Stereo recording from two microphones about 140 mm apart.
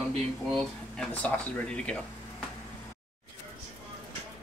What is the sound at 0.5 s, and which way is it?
Speech, 5° left (ahead or behind).